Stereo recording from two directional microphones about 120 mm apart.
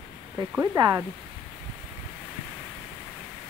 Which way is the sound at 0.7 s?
30° right (ahead or behind).